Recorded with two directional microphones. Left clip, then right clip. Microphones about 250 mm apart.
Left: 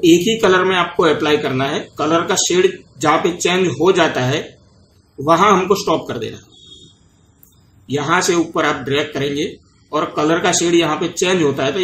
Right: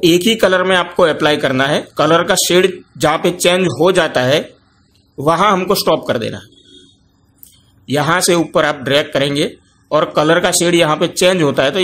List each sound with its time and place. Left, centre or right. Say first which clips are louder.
0.0 s speech: right 1 dB; right
7.8 s speech: right 2 dB; right